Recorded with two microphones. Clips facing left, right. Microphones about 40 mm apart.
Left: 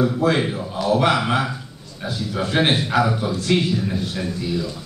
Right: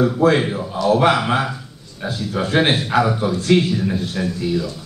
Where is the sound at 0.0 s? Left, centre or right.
Centre.